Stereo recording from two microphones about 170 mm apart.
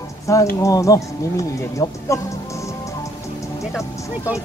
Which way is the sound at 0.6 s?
20° left (ahead or behind).